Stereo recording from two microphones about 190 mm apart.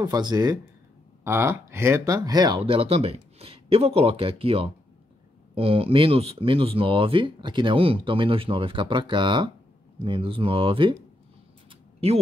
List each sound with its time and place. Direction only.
0.0 s speech: 20° right (ahead or behind)